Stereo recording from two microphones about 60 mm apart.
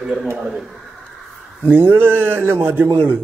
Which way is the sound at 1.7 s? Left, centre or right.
Right.